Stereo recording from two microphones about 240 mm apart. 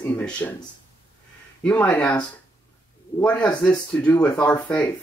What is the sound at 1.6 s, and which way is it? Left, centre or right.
Speech, centre.